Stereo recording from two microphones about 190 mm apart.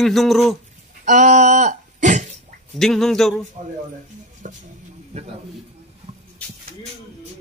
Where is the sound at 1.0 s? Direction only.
40° right (ahead or behind).